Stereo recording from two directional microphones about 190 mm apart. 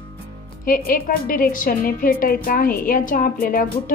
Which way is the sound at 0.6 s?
50° left (ahead or behind).